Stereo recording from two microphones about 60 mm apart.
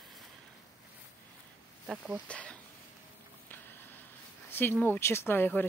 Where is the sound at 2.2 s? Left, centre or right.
Centre.